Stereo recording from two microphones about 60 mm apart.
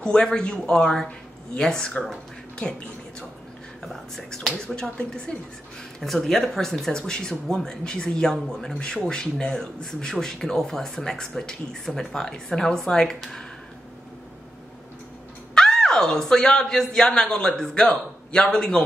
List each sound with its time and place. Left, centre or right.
0.0 s speech: centre
3.8 s speech: centre
4.6 s speech: centre
15.5 s speech: centre